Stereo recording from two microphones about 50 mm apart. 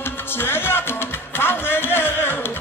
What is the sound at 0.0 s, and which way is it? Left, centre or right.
Music, left.